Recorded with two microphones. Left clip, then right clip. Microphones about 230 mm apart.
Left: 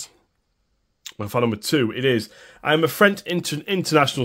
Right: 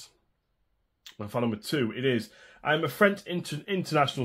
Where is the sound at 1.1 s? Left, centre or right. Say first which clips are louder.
Left 8 dB; left.